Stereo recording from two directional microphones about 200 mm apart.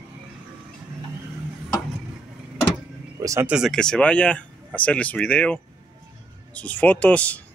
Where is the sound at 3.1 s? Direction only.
15° right (ahead or behind).